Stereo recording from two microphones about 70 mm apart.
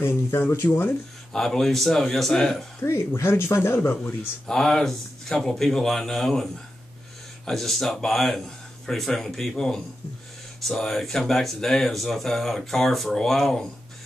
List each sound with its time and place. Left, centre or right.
0.0 s speech: left
1.3 s speech: centre
2.8 s speech: left
4.5 s speech: centre